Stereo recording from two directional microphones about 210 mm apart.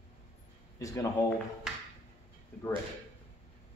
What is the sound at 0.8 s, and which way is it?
Speech, 15° left (ahead or behind).